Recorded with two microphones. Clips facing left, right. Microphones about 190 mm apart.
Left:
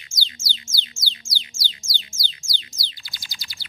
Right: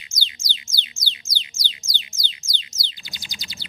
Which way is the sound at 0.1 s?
15° right (ahead or behind).